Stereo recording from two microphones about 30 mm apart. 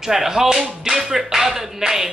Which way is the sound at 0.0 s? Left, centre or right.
Centre.